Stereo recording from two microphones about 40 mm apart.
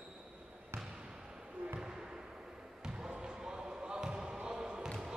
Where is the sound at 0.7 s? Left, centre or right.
Right.